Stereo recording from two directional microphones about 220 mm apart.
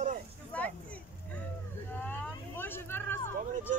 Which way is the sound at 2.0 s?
10° left (ahead or behind).